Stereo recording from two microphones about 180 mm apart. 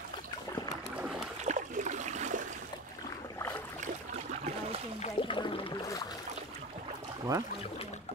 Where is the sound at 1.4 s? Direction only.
40° right (ahead or behind).